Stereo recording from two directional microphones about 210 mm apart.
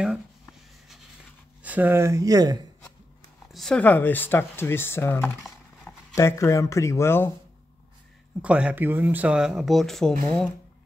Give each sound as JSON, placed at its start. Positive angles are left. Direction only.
{"t": 0.0, "sound": "a sound", "side_deg": 0}
{"t": 1.6, "sound": "speech", "side_deg": -10}
{"t": 3.5, "sound": "speech", "side_deg": 5}
{"t": 8.4, "sound": "speech", "side_deg": -5}